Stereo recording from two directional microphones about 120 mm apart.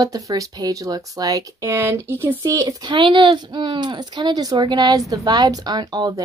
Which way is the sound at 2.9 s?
45° right (ahead or behind).